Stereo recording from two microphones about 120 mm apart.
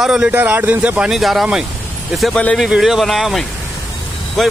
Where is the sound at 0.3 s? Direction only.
15° right (ahead or behind).